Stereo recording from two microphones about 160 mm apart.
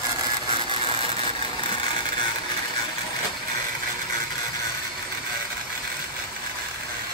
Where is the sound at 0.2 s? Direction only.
35° right (ahead or behind).